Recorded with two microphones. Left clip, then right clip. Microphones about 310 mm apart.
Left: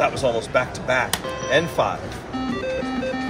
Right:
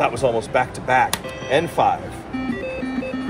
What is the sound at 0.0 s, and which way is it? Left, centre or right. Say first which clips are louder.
Speech: right 1 dB; right.